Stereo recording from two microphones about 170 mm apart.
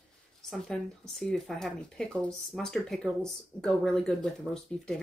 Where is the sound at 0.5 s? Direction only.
5° left (ahead or behind).